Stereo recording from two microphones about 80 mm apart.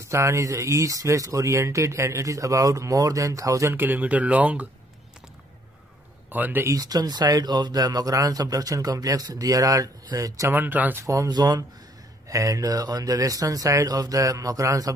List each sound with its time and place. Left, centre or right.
0.0 s speech: right
3.7 s speech: right
6.3 s speech: right
6.6 s speech: right
10.5 s speech: right
11.0 s speech: right
11.2 s speech: right
12.3 s speech: right